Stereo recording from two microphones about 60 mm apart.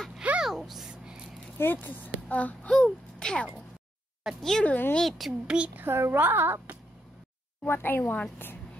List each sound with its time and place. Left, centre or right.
0.4 s a sound: centre
1.6 s speech: left; by 4.6 s centre
4.6 s a woman's voice: left
5.0 s a woman's voice: centre
5.8 s a woman's voice: right
7.6 s a woman's voice: left